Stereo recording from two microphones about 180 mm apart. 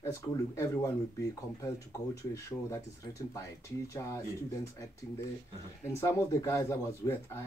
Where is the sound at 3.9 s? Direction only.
20° left (ahead or behind).